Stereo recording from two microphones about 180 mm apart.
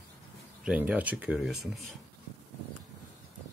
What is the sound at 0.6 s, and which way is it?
Speech, 5° right (ahead or behind).